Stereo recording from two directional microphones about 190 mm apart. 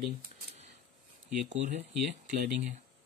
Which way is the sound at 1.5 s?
40° right (ahead or behind).